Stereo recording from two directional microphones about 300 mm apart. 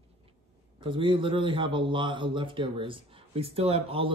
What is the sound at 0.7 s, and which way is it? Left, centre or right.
A man's voice, centre.